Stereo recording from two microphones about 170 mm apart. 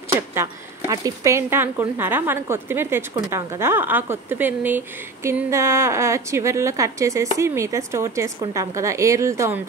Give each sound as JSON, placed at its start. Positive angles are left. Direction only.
{"t": 0.1, "sound": "speech", "side_deg": -15}